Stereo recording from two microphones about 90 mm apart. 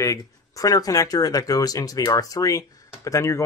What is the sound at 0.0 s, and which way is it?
Speech, 35° left (ahead or behind).